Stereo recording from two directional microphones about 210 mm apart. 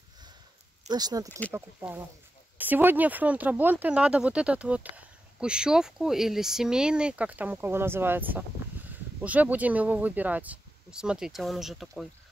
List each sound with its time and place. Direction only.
0.8 s speech: 20° right (ahead or behind); by 12.1 s centre (ahead or behind)